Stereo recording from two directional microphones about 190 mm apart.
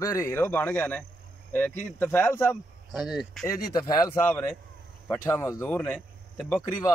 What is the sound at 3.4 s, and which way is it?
Speech, 20° left (ahead or behind).